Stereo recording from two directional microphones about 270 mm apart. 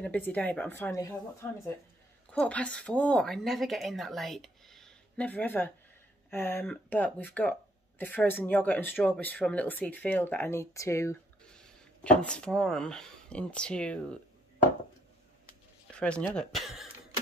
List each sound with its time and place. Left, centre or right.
0.0 s speech: centre
16.0 s speech: centre